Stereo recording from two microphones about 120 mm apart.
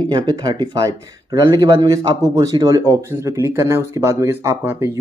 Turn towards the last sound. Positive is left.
turn(degrees=-25)  # may be behind; listen again after turning